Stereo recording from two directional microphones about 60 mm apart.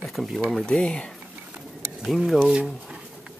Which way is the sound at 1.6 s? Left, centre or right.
Centre.